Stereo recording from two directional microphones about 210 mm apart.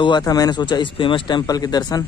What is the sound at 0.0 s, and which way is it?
A man's voice, 20° left (ahead or behind).